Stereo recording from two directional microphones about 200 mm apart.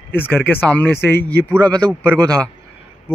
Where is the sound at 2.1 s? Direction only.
20° right (ahead or behind).